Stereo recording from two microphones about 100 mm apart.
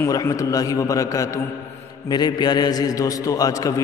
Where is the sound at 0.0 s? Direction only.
35° left (ahead or behind).